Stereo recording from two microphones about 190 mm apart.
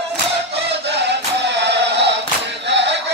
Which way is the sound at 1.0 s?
65° right (ahead or behind).